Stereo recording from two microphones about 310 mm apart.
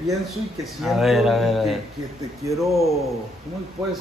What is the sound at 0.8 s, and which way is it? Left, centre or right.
A man's voice, centre.